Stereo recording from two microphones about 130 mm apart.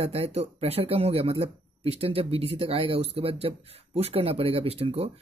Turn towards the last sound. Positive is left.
turn(degrees=-50)  # may be behind; listen again after turning